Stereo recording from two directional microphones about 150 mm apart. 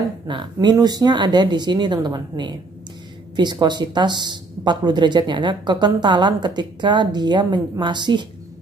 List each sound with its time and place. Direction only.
0.3 s speech: 30° right (ahead or behind)